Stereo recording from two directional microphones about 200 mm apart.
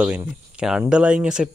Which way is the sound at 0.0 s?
10° right (ahead or behind).